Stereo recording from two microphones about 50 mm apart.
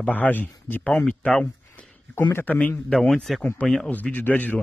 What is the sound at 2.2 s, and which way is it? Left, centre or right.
Speech, left.